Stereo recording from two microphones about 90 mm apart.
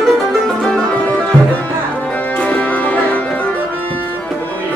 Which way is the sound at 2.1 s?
20° left (ahead or behind).